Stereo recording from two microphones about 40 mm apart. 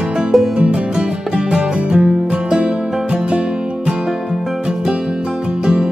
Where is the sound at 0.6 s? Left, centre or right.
Right.